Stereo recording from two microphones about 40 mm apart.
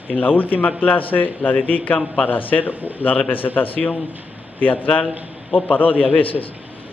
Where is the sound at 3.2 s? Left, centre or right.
Left.